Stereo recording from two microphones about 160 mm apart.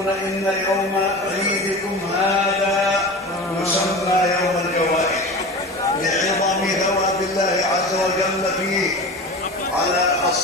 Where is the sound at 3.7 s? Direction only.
20° left (ahead or behind).